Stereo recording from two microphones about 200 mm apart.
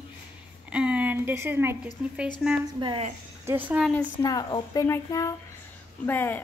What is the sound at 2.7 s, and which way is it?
Speech, 25° right (ahead or behind).